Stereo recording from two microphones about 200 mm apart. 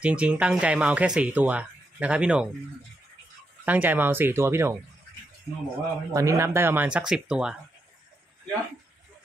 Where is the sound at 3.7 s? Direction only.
10° right (ahead or behind).